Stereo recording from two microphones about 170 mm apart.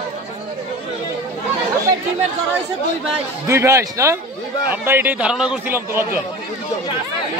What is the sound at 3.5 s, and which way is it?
A man's voice, 15° right (ahead or behind).